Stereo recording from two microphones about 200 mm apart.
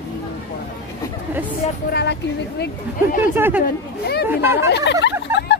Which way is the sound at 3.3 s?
10° right (ahead or behind).